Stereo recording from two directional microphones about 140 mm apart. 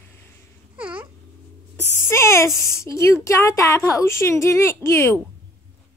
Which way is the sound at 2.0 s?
20° left (ahead or behind).